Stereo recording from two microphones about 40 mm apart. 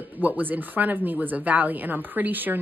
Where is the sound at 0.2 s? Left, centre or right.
Right.